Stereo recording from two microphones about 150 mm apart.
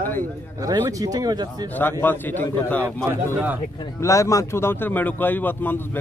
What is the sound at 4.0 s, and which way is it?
A man's voice, 20° left (ahead or behind).